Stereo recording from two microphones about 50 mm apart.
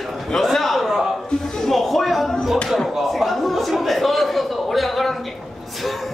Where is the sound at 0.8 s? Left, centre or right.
Centre.